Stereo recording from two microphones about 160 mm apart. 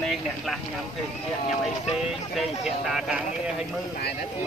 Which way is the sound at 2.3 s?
Centre (ahead or behind).